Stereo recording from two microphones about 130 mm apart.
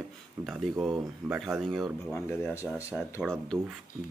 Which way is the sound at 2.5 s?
20° left (ahead or behind).